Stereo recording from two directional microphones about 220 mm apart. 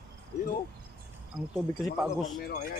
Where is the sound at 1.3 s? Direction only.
5° right (ahead or behind).